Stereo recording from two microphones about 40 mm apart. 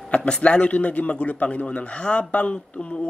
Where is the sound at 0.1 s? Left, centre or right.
Left.